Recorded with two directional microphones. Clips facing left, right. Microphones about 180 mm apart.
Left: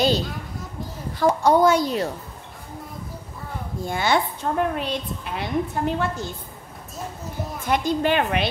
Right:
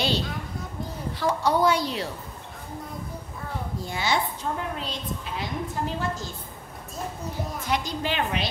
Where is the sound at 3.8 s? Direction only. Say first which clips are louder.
Left 5 dB; 55° left (ahead or behind).